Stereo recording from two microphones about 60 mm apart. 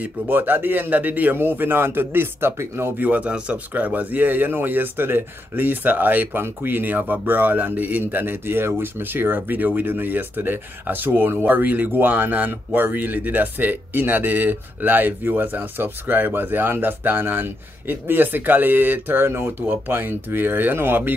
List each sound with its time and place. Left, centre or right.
0.0 s speech: right
2.7 s speech: right